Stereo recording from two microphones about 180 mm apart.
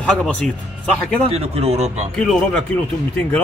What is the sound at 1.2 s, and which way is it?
Speech, 35° right (ahead or behind).